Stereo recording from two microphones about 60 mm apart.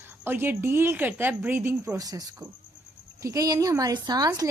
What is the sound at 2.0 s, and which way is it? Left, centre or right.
Speech, right.